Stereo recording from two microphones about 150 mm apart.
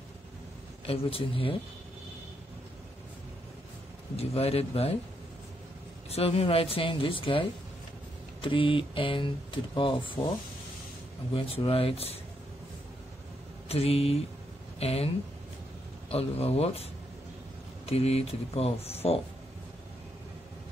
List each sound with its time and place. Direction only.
0.8 s speech: 35° left (ahead or behind)
4.2 s speech: 40° left (ahead or behind)
6.0 s speech: 40° left (ahead or behind)
11.3 s speech: 40° left (ahead or behind)
13.7 s speech: 40° left (ahead or behind)
16.1 s speech: 40° left (ahead or behind)
17.8 s speech: 40° left (ahead or behind)